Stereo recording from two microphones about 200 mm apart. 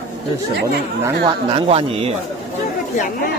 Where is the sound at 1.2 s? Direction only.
25° right (ahead or behind).